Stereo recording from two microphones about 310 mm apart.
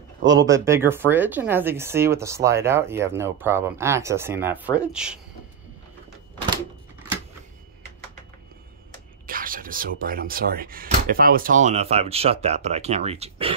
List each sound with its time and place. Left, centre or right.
0.3 s speech: centre
9.2 s speech: right